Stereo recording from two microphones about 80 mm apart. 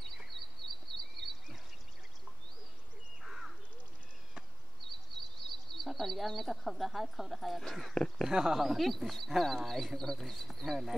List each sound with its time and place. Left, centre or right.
0.6 s a sound: right
1.1 s a sound: centre
3.3 s bird: centre
5.1 s bird: centre
5.7 s speech: centre
8.3 s speech: centre